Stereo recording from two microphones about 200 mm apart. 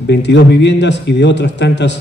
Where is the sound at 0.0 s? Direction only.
60° left (ahead or behind).